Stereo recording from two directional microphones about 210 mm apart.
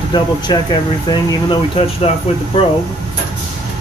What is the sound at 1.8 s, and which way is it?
Speech, 25° left (ahead or behind).